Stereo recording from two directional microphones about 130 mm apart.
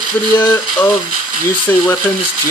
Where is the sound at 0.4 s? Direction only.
15° left (ahead or behind).